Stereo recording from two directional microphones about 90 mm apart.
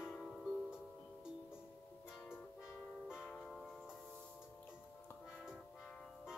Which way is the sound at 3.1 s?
20° left (ahead or behind).